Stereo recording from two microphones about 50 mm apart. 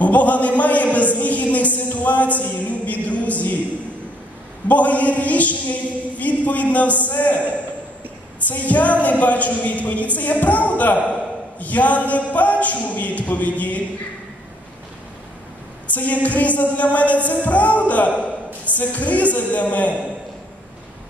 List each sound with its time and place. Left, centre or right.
0.0 s music: left
4.6 s music: left
8.5 s music: left
15.9 s music: left